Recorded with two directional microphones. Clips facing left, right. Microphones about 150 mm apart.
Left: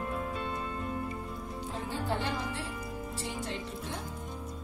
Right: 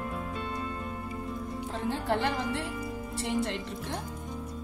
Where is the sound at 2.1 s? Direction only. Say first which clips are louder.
Right 5 dB; 65° right (ahead or behind).